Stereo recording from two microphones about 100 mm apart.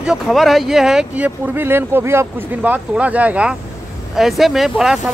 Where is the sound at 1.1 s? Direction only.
20° right (ahead or behind).